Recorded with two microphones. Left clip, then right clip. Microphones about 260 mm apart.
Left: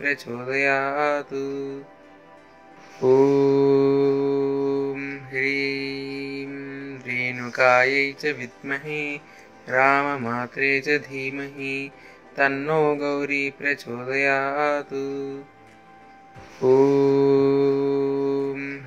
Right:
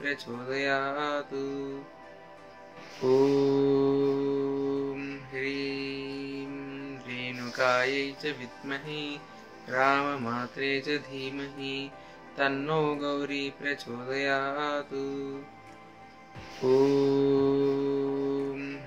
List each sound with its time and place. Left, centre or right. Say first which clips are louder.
0.0 s music: left 8 dB; left
3.2 s mantra: left 5 dB; left
8.9 s speech: left 8 dB; left
9.7 s music: left 7 dB; left
11.5 s speech: left 6 dB; left
12.4 s music: left 7 dB; centre
16.7 s mantra: left 6 dB; left